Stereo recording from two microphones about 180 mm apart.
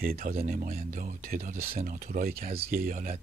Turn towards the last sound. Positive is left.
turn(degrees=-50)  # may be behind; listen again after turning